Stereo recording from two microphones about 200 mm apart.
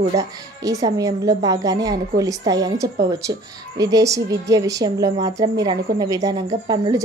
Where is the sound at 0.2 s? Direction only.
15° right (ahead or behind).